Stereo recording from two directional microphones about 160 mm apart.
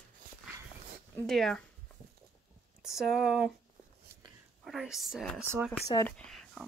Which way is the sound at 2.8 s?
Centre (ahead or behind).